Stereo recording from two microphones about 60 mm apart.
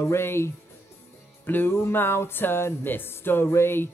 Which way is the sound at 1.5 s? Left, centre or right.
Left.